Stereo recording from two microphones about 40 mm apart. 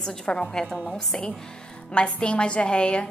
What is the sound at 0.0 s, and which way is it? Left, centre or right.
A woman's voice, centre.